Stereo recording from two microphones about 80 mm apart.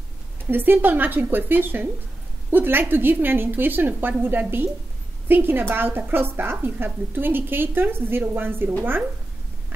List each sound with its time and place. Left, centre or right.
0.5 s a woman's voice: right